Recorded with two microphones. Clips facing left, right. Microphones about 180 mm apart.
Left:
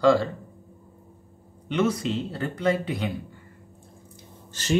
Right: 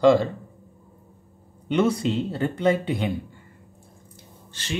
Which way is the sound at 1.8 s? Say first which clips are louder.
Right 3 dB; 30° right (ahead or behind).